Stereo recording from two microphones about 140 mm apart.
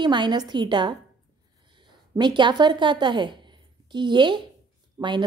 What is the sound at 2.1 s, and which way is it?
A woman's voice, 35° right (ahead or behind).